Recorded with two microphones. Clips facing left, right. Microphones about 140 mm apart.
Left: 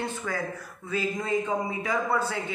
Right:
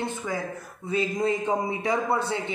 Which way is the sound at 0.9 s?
30° right (ahead or behind).